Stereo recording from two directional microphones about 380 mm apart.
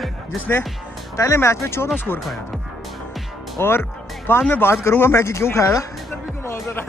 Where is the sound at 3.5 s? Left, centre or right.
Centre.